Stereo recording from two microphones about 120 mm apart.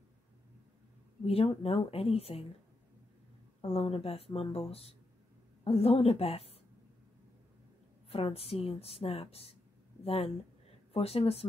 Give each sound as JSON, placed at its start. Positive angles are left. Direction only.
{"t": 1.2, "sound": "a woman's voice", "side_deg": 55}
{"t": 3.6, "sound": "a woman's voice", "side_deg": 55}
{"t": 8.1, "sound": "a woman's voice", "side_deg": 55}